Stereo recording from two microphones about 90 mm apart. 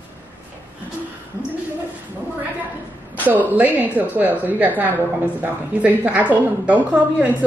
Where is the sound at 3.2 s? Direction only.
20° right (ahead or behind).